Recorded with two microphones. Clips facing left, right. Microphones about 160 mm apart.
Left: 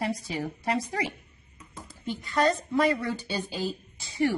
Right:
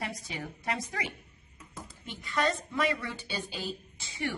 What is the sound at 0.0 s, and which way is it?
A woman's voice, 35° left (ahead or behind).